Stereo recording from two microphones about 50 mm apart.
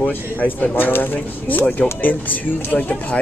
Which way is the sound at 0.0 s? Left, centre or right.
Left.